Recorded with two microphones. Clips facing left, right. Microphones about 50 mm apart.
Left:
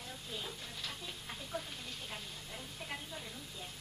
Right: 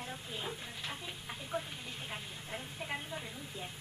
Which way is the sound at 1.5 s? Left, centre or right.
Right.